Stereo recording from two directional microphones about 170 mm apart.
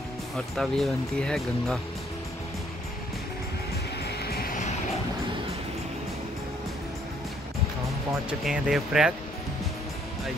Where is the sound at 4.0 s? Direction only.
75° left (ahead or behind).